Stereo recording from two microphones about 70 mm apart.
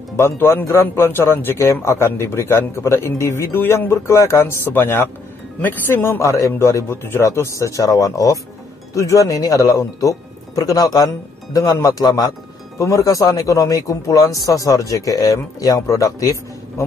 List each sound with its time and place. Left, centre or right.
0.2 s a man's voice: left
1.6 s a man's voice: left
11.5 s speech: left
12.7 s speech: left